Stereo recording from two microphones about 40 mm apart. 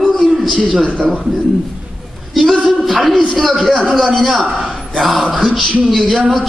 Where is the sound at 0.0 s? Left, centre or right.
Centre.